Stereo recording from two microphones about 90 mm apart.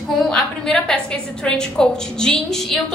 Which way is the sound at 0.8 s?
10° left (ahead or behind).